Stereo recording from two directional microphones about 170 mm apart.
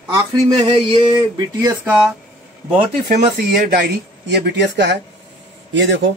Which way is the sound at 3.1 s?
45° right (ahead or behind).